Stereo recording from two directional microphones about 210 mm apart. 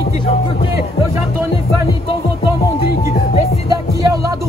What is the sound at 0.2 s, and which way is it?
Music, 25° left (ahead or behind).